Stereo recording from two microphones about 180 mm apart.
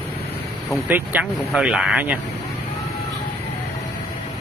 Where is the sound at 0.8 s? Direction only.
10° right (ahead or behind).